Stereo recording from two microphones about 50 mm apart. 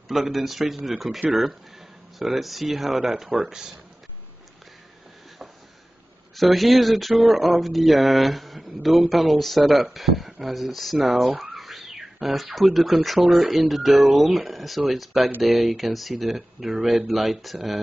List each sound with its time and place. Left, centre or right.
0.1 s speech: centre
6.3 s speech: centre
11.5 s bird: centre
13.0 s speech: centre